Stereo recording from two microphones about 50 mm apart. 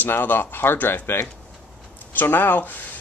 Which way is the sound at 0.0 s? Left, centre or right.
Left.